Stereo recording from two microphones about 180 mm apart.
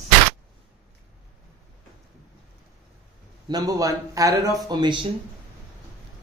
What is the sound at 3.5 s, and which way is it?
Speech, 20° right (ahead or behind).